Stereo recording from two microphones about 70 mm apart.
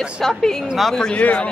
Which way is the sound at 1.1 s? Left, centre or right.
Centre.